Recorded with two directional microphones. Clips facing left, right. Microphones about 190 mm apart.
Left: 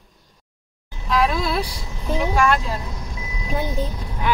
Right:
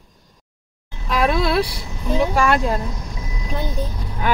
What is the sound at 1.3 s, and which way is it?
Vehicle, 70° right (ahead or behind).